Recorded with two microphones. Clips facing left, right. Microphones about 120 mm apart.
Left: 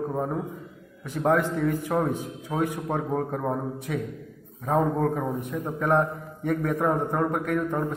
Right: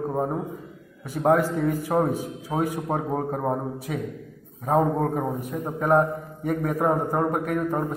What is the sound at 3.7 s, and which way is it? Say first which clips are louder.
A man's voice: even; 10° right (ahead or behind).